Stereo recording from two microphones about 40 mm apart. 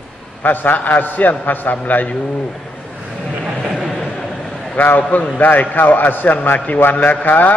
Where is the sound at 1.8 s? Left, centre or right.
Left.